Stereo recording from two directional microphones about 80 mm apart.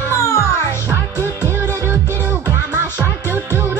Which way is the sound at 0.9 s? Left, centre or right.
Right.